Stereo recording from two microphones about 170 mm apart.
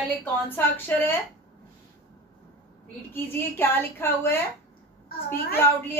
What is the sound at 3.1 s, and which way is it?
Speech, 10° left (ahead or behind).